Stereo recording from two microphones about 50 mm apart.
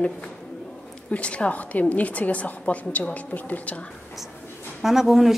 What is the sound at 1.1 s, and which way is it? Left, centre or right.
A woman's voice, left.